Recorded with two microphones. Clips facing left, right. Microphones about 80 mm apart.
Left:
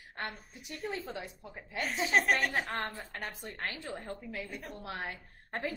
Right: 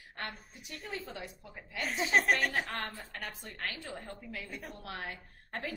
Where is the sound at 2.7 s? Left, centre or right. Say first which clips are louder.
Left 2 dB; left.